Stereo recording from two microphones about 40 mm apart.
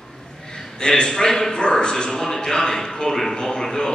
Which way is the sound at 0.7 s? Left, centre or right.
Centre.